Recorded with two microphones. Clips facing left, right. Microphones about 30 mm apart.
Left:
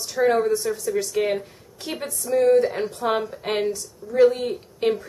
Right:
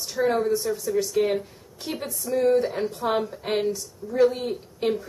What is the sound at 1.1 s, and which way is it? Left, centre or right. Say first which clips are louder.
A woman's voice: even; centre.